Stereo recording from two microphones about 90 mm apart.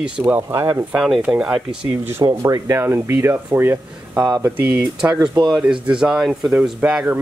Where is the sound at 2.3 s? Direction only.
40° right (ahead or behind).